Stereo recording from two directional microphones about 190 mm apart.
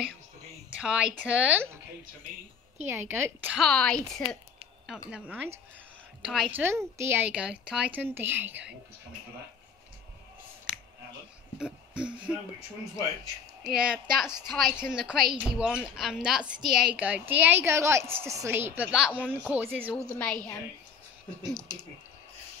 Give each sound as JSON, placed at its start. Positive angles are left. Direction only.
{"t": 0.7, "sound": "a woman's voice", "side_deg": -5}
{"t": 2.9, "sound": "a woman's voice", "side_deg": -10}
{"t": 3.5, "sound": "a woman's voice", "side_deg": 0}
{"t": 5.1, "sound": "a woman's voice", "side_deg": -5}
{"t": 11.5, "sound": "speech", "side_deg": -5}
{"t": 12.5, "sound": "speech", "side_deg": 15}
{"t": 13.7, "sound": "a woman's voice", "side_deg": -5}